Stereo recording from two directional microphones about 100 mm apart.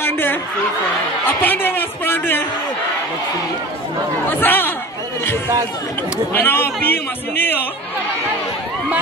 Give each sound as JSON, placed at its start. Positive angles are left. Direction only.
{"t": 0.0, "sound": "a sound", "side_deg": 20}
{"t": 1.2, "sound": "a man's voice", "side_deg": 20}
{"t": 4.3, "sound": "a man's voice", "side_deg": 20}
{"t": 6.3, "sound": "a man's voice", "side_deg": 20}